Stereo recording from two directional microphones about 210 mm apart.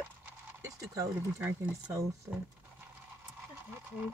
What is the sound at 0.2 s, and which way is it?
Speech, 15° right (ahead or behind).